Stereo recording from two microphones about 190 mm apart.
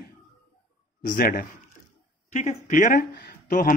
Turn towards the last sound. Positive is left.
turn(degrees=45)  # may be behind; listen again after turning